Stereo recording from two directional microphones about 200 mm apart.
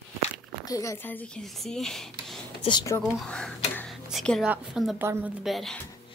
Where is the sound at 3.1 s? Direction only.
Centre (ahead or behind).